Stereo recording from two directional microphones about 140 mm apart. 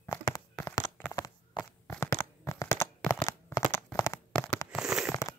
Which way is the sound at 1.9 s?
20° left (ahead or behind).